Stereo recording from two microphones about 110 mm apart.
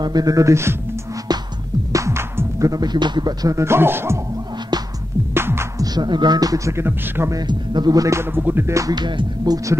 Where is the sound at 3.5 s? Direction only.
25° right (ahead or behind).